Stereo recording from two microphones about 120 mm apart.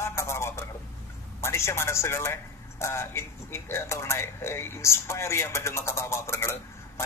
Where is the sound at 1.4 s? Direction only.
20° left (ahead or behind).